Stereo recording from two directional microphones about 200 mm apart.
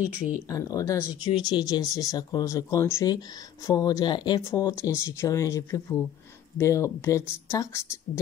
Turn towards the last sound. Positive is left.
turn(degrees=15)  # may be behind; listen again after turning